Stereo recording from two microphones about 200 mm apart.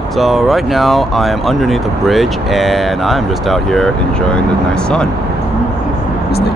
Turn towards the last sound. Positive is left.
turn(degrees=5)  # may be behind; listen again after turning